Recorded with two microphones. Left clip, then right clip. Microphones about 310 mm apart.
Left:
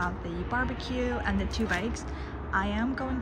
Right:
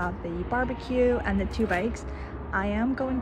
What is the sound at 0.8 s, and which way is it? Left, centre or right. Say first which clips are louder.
Speech: right 7 dB; centre.